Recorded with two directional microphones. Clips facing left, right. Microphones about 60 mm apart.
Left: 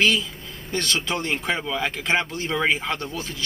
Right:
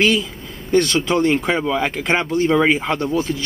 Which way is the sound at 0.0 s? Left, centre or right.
Right.